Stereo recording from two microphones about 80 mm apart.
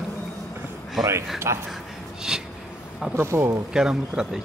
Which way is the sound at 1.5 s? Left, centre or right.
Right.